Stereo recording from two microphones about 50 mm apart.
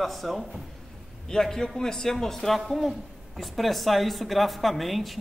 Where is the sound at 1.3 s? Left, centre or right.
Centre.